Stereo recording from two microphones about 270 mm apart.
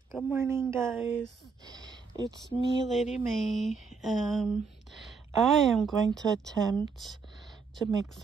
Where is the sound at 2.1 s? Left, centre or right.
Centre.